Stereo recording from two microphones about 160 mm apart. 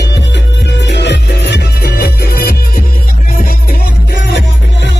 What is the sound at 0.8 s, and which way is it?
Music, 90° left.